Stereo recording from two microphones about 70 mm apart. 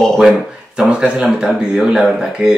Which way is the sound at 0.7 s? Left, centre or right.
Centre.